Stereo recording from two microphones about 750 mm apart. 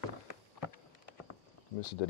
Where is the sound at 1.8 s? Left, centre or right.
Left.